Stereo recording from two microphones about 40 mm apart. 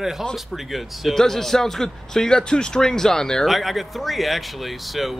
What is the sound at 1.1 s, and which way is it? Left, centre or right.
A man's voice, centre.